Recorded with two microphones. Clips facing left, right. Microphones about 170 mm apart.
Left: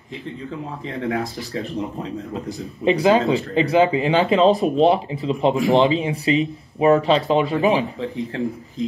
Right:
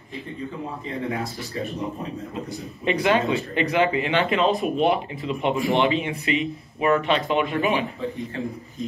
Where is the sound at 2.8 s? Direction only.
30° left (ahead or behind).